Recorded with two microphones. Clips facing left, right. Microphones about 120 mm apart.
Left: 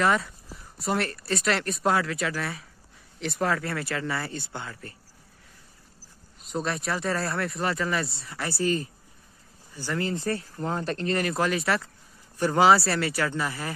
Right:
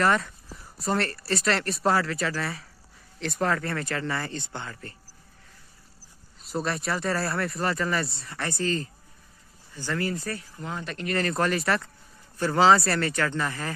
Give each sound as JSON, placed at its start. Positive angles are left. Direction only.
{"t": 0.0, "sound": "speech", "side_deg": 0}
{"t": 6.5, "sound": "speech", "side_deg": 0}
{"t": 11.1, "sound": "speech", "side_deg": 5}
{"t": 12.4, "sound": "speech", "side_deg": 15}
{"t": 12.7, "sound": "speech", "side_deg": 5}